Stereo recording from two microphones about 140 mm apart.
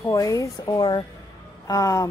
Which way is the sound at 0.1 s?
20° left (ahead or behind).